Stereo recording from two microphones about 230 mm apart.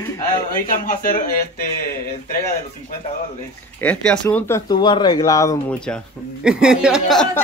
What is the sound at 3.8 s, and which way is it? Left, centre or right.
Speech, centre.